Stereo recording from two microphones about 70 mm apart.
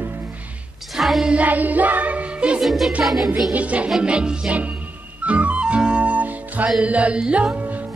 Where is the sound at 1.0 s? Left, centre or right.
Centre.